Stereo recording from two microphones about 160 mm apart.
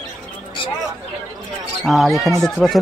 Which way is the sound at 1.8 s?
Centre (ahead or behind).